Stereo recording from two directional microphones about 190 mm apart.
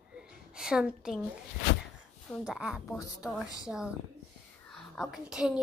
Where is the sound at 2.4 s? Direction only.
Centre (ahead or behind).